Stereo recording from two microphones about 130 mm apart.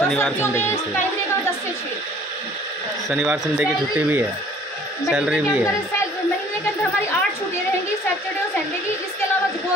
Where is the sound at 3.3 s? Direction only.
10° right (ahead or behind).